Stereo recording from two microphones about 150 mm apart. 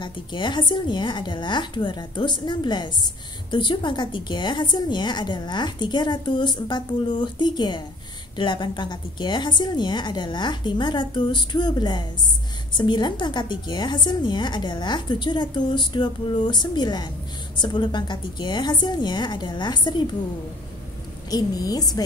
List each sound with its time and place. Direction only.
0.0 s a woman's voice: 30° left (ahead or behind)
21.3 s a woman's voice: 25° left (ahead or behind)